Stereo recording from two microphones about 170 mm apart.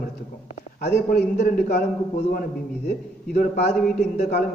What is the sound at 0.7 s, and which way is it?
A man's voice, 65° left (ahead or behind).